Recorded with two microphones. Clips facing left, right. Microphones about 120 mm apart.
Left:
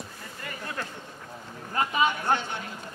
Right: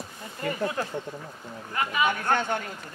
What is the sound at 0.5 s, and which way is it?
Speech, 30° right (ahead or behind).